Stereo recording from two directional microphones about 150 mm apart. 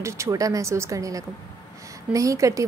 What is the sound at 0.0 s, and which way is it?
A woman's voice, 20° right (ahead or behind).